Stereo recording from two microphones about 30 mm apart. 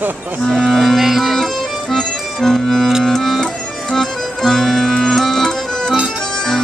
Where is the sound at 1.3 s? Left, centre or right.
Centre.